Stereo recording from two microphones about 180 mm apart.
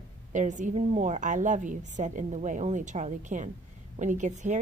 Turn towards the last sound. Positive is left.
turn(degrees=-45)  # may be behind; listen again after turning